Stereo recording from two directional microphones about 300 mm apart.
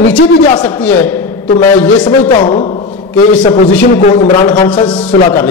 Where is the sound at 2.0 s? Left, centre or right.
Centre.